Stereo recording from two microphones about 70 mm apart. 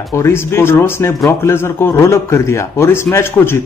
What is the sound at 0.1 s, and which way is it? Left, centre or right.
Speech, left.